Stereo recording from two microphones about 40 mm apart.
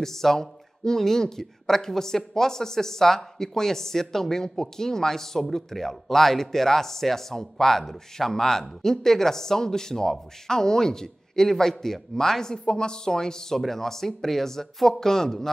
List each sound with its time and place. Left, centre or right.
0.0 s speech: centre